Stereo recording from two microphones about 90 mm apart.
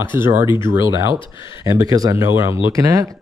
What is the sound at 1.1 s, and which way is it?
Speech, 65° left (ahead or behind).